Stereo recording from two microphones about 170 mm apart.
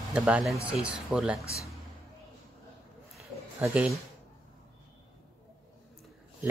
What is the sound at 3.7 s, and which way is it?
Speech, 5° right (ahead or behind).